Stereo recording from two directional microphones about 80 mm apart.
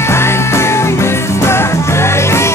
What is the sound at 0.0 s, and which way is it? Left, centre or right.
Music, left.